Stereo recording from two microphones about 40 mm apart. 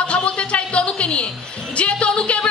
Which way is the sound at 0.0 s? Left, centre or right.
Left.